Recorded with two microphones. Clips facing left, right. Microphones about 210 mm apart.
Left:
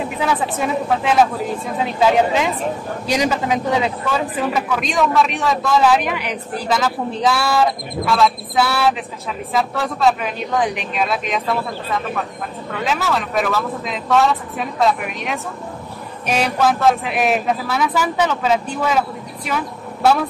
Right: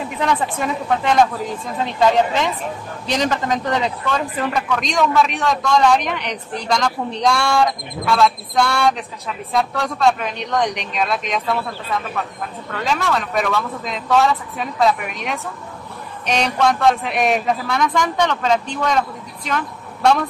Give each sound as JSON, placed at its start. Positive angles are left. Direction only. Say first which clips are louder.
{"t": 0.2, "sound": "a man's voice", "louder": "right 1 dB", "side_deg": 5}